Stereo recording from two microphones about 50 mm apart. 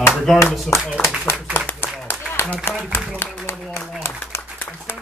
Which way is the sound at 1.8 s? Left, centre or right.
Left.